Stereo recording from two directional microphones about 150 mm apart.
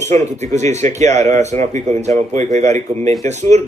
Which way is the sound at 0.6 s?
50° right (ahead or behind).